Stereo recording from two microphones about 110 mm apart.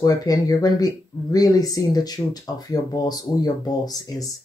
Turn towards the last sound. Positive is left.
turn(degrees=35)  # may be behind; listen again after turning